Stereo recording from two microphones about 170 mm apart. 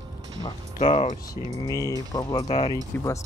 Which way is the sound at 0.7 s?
40° left (ahead or behind).